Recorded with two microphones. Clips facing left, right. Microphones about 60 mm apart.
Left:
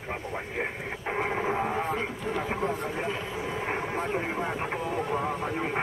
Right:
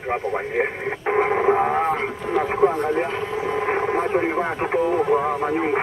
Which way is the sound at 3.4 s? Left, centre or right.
Right.